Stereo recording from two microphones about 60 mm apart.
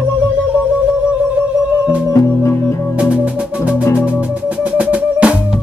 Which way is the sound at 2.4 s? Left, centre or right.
Left.